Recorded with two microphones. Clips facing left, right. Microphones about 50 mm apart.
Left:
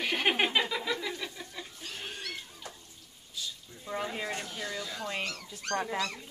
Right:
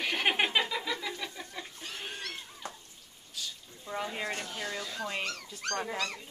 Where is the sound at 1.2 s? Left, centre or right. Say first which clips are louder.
Even; centre.